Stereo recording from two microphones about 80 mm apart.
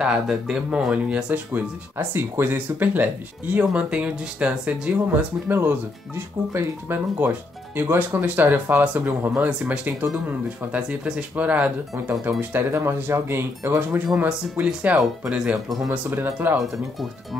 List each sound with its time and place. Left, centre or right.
0.0 s speech: centre
5.5 s speech: right
14.6 s speech: centre
15.9 s speech: right
16.5 s speech: centre